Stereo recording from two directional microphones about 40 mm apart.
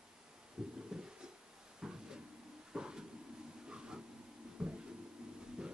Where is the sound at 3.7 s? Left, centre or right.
Centre.